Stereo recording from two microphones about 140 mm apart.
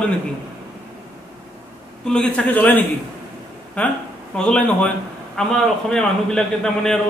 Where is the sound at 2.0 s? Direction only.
5° left (ahead or behind).